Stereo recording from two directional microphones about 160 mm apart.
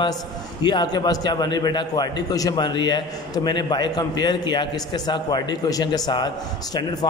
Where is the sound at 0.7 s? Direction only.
25° left (ahead or behind).